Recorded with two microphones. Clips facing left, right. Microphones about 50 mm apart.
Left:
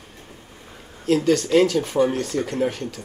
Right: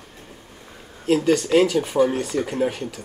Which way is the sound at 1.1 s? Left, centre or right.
Centre.